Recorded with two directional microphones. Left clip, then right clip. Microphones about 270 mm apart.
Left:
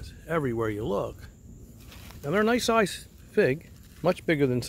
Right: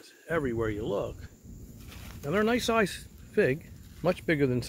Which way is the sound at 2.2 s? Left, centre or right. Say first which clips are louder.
Left 3 dB; left.